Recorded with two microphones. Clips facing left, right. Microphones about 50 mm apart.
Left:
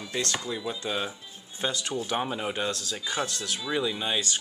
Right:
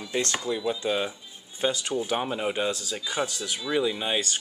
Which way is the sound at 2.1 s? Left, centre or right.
Centre.